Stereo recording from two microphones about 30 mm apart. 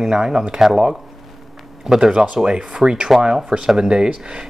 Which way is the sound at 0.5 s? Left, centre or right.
Centre.